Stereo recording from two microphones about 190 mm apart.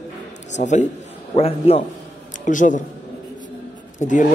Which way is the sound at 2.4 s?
45° left (ahead or behind).